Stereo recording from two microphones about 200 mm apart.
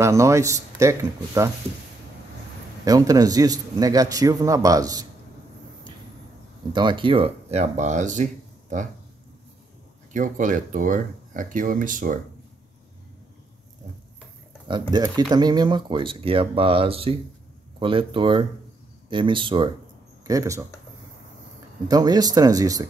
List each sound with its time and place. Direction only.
0.0 s a man's voice: 15° right (ahead or behind)
2.8 s a man's voice: 20° right (ahead or behind)
6.7 s speech: 25° right (ahead or behind); by 8.8 s 40° right (ahead or behind)
10.1 s speech: 40° right (ahead or behind)
14.7 s a man's voice: 20° right (ahead or behind)
21.8 s speech: 20° right (ahead or behind)